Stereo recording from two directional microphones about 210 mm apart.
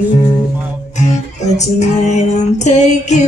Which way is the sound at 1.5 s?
35° left (ahead or behind).